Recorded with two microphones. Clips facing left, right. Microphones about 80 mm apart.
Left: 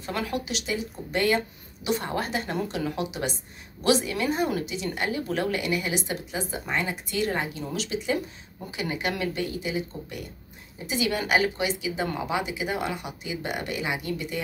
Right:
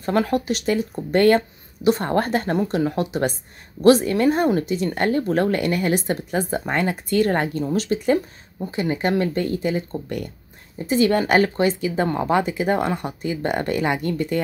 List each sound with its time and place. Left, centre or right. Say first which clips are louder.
0.0 s speech: right 9 dB; right
8.7 s speech: right 8 dB; right